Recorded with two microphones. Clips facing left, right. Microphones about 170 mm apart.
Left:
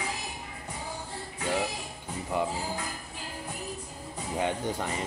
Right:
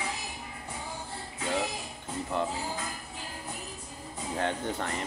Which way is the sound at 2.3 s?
10° left (ahead or behind).